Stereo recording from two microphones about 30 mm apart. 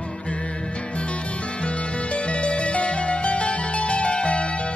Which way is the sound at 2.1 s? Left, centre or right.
Left.